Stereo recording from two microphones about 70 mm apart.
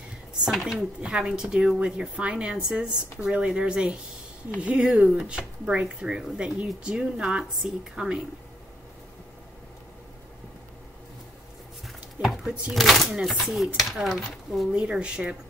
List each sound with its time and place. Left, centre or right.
0.5 s speech: centre
0.7 s speech: centre
12.2 s a sound: right
12.7 s speech: centre
14.7 s speech: centre